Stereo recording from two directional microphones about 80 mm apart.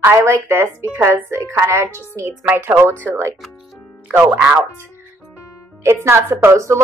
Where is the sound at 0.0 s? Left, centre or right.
Right.